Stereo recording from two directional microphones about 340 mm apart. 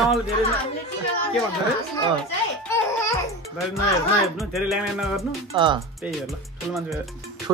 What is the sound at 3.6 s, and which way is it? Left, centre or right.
Speech, centre.